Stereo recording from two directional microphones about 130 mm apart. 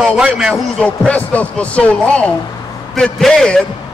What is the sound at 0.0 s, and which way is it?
Speech, centre (ahead or behind).